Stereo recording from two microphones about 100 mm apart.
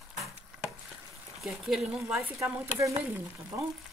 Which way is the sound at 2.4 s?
30° right (ahead or behind).